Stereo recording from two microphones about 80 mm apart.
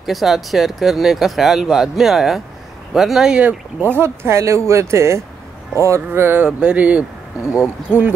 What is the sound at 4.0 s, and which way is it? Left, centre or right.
Speech, right.